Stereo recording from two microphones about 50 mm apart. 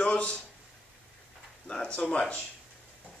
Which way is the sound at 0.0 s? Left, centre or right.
Left.